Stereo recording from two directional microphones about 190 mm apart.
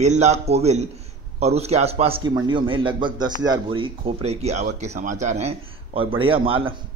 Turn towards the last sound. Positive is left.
turn(degrees=-30)  # may be behind; listen again after turning